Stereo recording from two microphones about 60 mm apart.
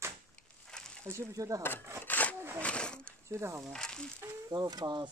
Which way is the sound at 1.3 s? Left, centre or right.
Right.